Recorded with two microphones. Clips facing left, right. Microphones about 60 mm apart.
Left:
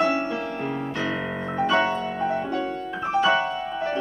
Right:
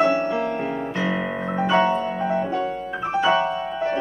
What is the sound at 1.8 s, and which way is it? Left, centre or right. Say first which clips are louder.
Music: right 3 dB; centre.